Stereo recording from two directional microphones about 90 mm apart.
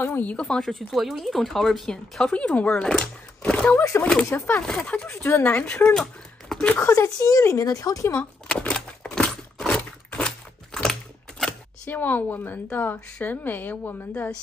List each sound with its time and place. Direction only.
0.0 s speech: 20° left (ahead or behind)
3.7 s a woman's voice: 30° left (ahead or behind)
6.8 s speech: 35° left (ahead or behind)
8.5 s a sound: 10° left (ahead or behind)
11.9 s a woman's voice: 20° left (ahead or behind)